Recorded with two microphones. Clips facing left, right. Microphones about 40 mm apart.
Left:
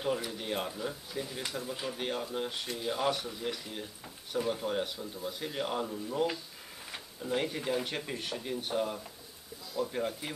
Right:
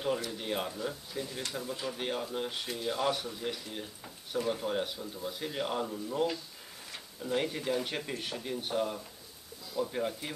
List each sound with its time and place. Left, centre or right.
0.3 s speech: centre